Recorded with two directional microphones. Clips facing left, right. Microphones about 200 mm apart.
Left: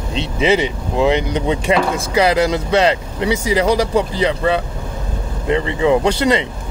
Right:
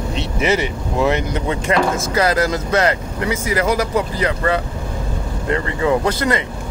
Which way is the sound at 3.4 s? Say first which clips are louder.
Left 3 dB; 30° left (ahead or behind).